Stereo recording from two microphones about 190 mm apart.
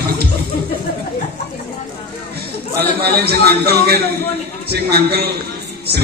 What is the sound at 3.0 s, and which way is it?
A man's voice, 55° right (ahead or behind).